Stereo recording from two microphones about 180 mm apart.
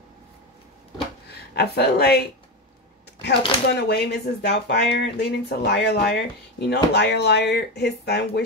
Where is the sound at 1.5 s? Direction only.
65° left (ahead or behind).